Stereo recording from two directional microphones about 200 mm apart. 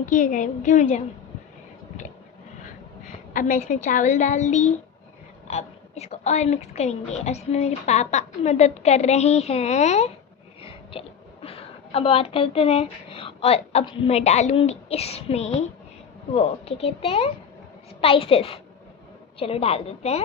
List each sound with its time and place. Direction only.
0.0 s a woman's voice: 40° left (ahead or behind)
3.3 s a woman's voice: 40° left (ahead or behind)